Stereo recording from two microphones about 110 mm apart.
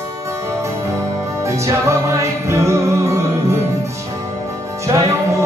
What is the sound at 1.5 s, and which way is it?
Music, 25° right (ahead or behind).